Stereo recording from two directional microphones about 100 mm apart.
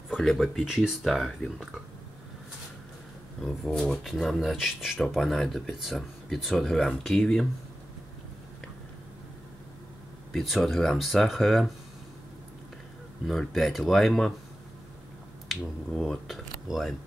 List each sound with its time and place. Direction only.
0.1 s speech: centre (ahead or behind)
3.4 s speech: 5° left (ahead or behind)
10.3 s speech: centre (ahead or behind)
13.3 s speech: centre (ahead or behind)
15.4 s speech: centre (ahead or behind)